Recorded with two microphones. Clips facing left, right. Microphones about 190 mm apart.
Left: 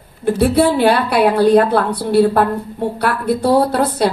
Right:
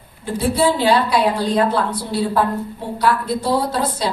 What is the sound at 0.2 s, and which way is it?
A woman's voice, 65° left (ahead or behind).